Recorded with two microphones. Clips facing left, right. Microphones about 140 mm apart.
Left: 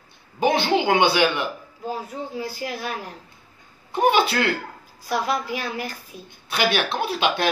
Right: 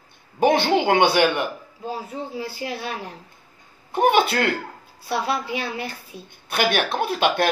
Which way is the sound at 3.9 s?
55° right (ahead or behind).